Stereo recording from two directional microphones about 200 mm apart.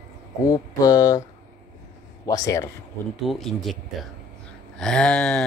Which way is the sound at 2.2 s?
15° left (ahead or behind).